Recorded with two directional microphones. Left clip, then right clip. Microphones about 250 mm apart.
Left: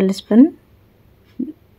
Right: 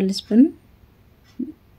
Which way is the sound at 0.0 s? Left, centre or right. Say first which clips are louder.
Left 4 dB; centre.